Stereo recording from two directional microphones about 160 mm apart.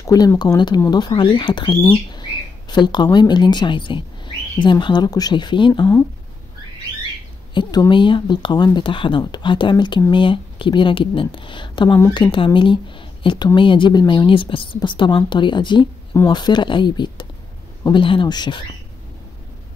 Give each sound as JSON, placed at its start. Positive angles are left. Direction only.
{"t": 0.0, "sound": "speech", "side_deg": 20}
{"t": 7.5, "sound": "speech", "side_deg": 25}